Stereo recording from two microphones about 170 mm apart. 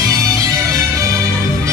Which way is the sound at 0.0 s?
20° right (ahead or behind).